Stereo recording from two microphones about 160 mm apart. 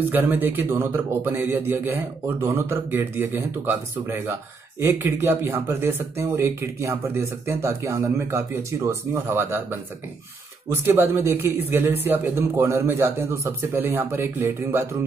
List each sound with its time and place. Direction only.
0.1 s speech: 10° right (ahead or behind)